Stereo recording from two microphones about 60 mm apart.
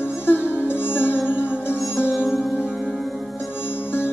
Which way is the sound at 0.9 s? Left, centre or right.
Left.